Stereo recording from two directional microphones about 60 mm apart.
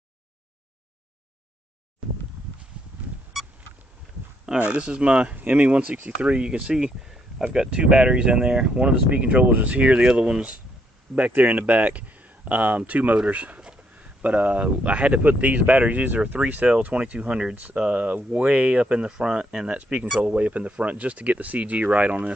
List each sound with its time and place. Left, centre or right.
4.6 s speech: centre